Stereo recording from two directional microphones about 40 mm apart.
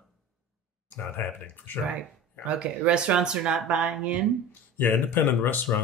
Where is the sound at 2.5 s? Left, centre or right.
Right.